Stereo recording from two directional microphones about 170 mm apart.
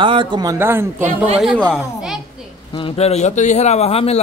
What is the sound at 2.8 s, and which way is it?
A man's voice, 35° left (ahead or behind).